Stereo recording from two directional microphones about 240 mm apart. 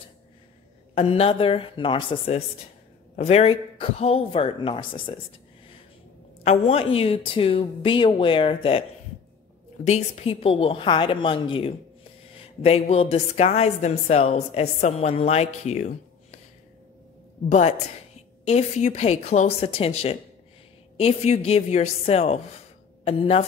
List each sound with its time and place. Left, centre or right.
0.9 s a woman's voice: left
6.4 s a woman's voice: left
9.8 s a woman's voice: left
17.5 s a woman's voice: left